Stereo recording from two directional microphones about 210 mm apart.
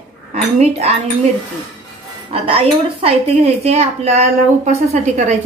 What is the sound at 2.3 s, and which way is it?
A woman's voice, 25° right (ahead or behind).